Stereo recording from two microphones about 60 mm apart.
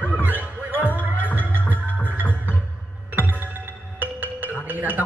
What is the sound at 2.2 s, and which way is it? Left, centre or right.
Music, left.